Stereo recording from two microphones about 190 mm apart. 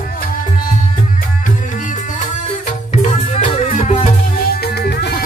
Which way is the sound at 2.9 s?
35° left (ahead or behind).